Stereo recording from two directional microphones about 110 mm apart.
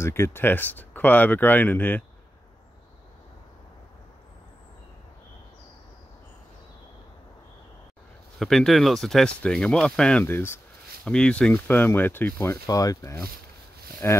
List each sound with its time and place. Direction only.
0.0 s speech: 25° left (ahead or behind)
8.4 s speech: 5° left (ahead or behind)
10.2 s speech: 20° left (ahead or behind)
11.1 s speech: 10° left (ahead or behind)
12.6 s speech: 35° left (ahead or behind)
14.0 s speech: 20° left (ahead or behind)